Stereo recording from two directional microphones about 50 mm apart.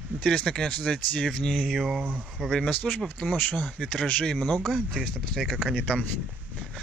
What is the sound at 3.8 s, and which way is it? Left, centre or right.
Speech, centre.